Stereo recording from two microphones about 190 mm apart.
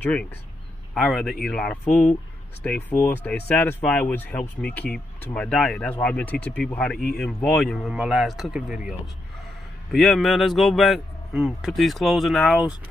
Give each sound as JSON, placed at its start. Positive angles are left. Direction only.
{"t": 0.0, "sound": "speech", "side_deg": 5}
{"t": 9.9, "sound": "speech", "side_deg": 0}